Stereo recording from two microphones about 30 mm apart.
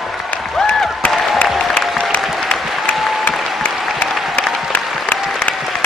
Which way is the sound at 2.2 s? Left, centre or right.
Centre.